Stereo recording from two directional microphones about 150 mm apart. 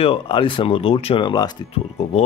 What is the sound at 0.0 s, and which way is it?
Speech, 35° left (ahead or behind).